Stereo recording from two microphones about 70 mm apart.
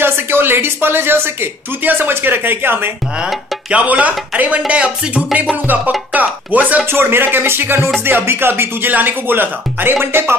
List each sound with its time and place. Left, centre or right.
0.0 s a woman's voice: right
3.7 s a woman's voice: right